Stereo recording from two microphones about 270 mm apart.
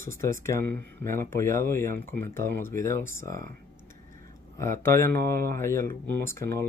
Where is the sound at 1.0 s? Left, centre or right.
Centre.